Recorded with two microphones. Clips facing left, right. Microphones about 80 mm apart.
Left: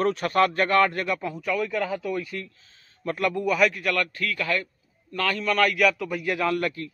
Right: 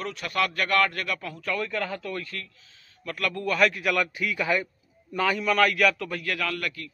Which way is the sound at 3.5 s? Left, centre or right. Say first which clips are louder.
Right 1 dB; centre.